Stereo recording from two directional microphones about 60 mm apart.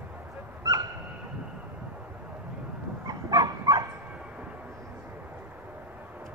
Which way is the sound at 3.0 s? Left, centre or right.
Right.